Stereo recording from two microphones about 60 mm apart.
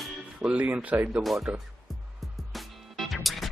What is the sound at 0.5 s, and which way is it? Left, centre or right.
Speech, right.